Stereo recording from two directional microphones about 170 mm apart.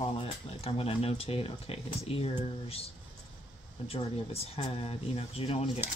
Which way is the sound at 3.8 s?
35° left (ahead or behind).